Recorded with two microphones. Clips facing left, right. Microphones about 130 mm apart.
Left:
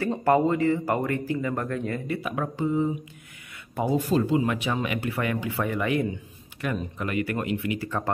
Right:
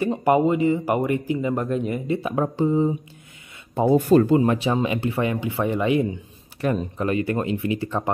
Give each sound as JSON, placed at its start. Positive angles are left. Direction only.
{"t": 0.0, "sound": "speech", "side_deg": -15}
{"t": 3.9, "sound": "speech", "side_deg": -55}
{"t": 6.6, "sound": "speech", "side_deg": -35}